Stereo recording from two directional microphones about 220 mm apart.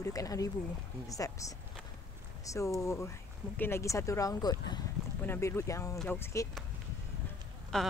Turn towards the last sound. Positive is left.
turn(degrees=5)  # may be behind; listen again after turning